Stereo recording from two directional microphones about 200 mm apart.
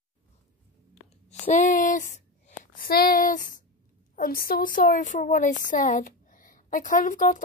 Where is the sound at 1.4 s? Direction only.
40° left (ahead or behind).